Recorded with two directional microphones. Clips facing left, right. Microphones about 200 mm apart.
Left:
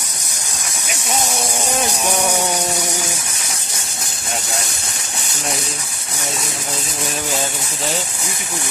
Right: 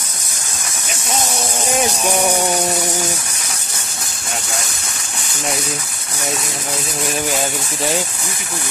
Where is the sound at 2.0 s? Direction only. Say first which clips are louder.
Right 2 dB; 15° right (ahead or behind).